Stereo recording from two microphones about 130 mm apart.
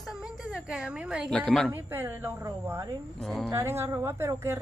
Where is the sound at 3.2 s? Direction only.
Centre (ahead or behind).